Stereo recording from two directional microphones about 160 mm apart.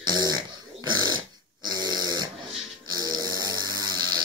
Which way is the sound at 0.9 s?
25° right (ahead or behind).